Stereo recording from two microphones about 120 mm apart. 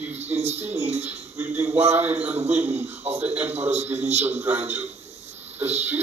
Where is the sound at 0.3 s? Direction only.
65° right (ahead or behind).